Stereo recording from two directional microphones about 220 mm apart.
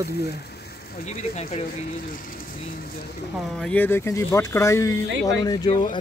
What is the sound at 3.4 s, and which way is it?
Speech, 5° left (ahead or behind).